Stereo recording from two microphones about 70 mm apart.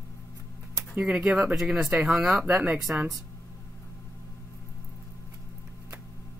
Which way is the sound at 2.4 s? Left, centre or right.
Right.